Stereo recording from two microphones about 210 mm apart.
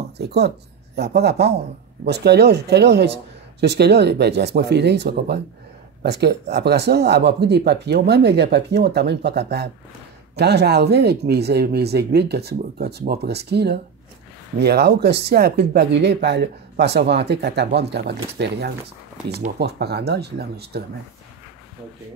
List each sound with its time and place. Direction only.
0.2 s speech: 50° right (ahead or behind)